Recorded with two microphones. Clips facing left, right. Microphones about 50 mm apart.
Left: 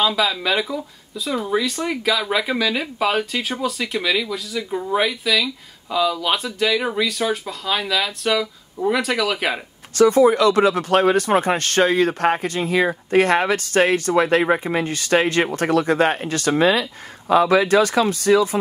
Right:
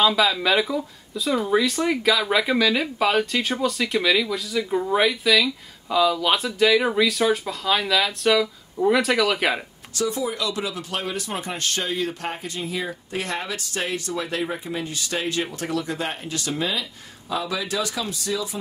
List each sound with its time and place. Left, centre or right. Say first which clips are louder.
0.0 s speech: even; centre
9.9 s speech: left 12 dB; left